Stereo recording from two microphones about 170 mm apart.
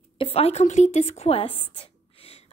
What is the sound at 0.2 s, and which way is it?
A woman's voice, 35° left (ahead or behind).